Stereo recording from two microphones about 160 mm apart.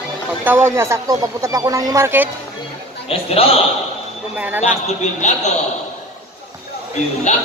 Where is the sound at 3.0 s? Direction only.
35° left (ahead or behind).